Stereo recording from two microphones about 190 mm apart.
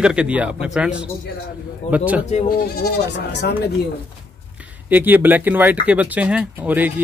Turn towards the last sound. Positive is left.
turn(degrees=-10)  # may be behind; listen again after turning